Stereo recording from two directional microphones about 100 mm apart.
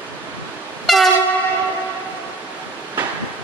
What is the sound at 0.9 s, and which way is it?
Train, centre (ahead or behind).